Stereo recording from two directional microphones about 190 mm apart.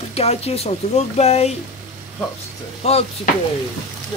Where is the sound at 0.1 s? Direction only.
35° left (ahead or behind).